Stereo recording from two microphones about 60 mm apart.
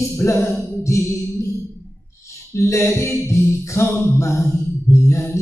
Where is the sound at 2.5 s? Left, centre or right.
Left.